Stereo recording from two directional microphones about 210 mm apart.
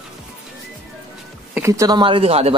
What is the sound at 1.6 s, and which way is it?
Speech, 15° right (ahead or behind).